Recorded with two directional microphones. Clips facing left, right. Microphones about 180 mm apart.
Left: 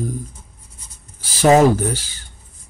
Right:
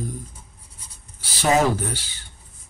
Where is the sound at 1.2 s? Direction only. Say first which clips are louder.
Left 7 dB; 45° left (ahead or behind).